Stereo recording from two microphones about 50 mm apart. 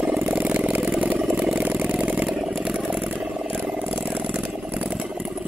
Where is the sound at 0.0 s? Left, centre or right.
Right.